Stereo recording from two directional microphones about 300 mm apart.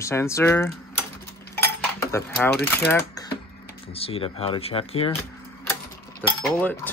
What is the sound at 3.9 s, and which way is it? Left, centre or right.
Speech, centre.